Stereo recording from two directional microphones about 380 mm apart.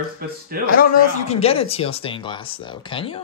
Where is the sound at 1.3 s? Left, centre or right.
Centre.